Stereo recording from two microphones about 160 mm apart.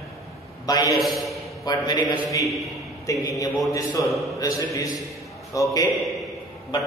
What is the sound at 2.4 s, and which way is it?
Chant, centre (ahead or behind).